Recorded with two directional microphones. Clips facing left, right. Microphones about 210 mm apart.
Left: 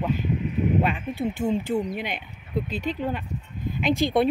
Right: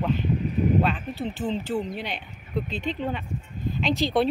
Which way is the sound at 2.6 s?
40° left (ahead or behind).